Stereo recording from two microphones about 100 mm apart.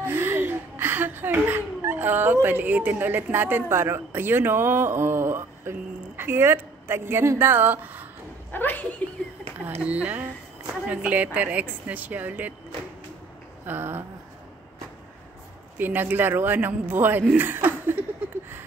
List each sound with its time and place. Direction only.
0.0 s speech: 20° right (ahead or behind)
8.5 s speech: 15° left (ahead or behind)
9.8 s speech: 15° right (ahead or behind)
13.7 s speech: 20° right (ahead or behind)
15.8 s speech: 20° right (ahead or behind)